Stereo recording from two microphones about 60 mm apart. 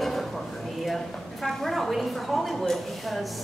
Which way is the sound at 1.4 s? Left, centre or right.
Centre.